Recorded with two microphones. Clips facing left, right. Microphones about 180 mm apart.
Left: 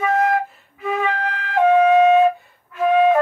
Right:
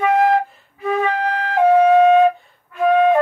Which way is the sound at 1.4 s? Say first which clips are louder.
Right 1 dB; 35° right (ahead or behind).